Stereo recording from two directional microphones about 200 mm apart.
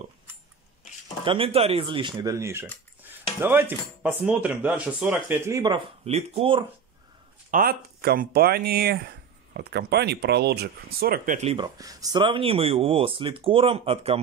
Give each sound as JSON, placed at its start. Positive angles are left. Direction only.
{"t": 1.2, "sound": "speech", "side_deg": -25}
{"t": 7.5, "sound": "speech", "side_deg": -50}
{"t": 11.6, "sound": "speech", "side_deg": -20}